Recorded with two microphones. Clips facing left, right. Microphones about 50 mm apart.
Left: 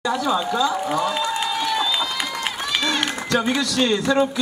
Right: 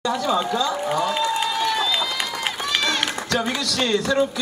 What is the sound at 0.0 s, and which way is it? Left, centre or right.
Speech, centre.